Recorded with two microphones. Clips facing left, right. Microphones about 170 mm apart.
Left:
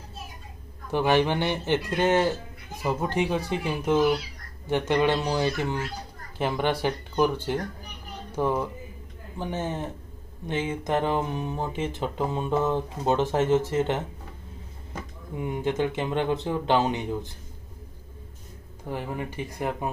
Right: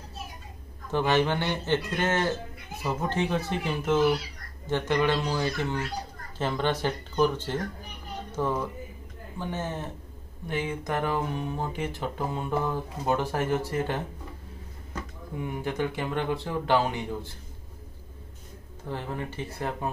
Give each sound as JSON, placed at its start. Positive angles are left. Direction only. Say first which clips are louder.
{"t": 0.9, "sound": "speech", "louder": "left 2 dB", "side_deg": 15}
{"t": 18.9, "sound": "speech", "louder": "left 2 dB", "side_deg": 15}